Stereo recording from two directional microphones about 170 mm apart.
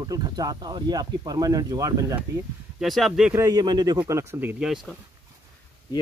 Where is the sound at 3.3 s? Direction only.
20° right (ahead or behind).